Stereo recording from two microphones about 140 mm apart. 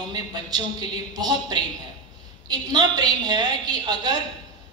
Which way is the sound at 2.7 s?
30° right (ahead or behind).